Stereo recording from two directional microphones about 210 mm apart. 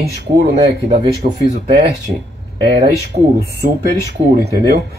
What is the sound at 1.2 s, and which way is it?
Speech, 35° right (ahead or behind).